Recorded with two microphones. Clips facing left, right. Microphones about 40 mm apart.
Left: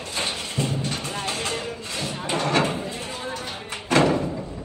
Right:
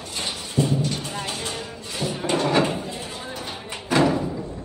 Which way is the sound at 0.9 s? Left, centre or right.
Left.